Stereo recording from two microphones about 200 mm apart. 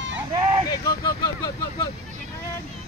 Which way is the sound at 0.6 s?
20° left (ahead or behind).